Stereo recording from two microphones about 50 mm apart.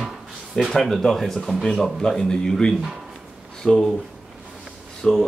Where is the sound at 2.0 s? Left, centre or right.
Centre.